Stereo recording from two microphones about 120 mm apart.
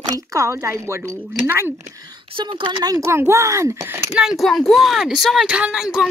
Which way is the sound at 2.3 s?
45° right (ahead or behind).